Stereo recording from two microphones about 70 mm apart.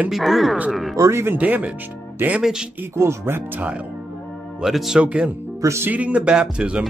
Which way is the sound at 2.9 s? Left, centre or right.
Right.